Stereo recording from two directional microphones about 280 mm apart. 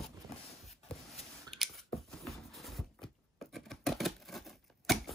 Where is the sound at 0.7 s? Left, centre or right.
Left.